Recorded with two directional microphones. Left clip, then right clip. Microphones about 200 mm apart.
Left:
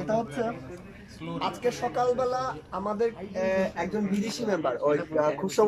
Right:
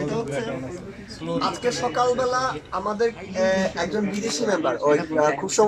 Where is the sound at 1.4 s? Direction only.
10° left (ahead or behind).